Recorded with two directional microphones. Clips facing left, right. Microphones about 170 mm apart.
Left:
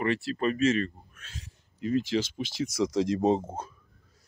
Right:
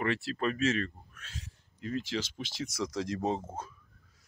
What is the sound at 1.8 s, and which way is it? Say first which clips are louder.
Speech: left 7 dB; 15° left (ahead or behind).